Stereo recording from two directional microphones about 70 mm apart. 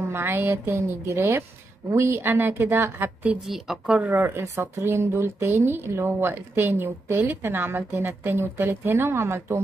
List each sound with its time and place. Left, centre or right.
0.0 s speech: right
3.4 s a woman's voice: centre
4.1 s speech: right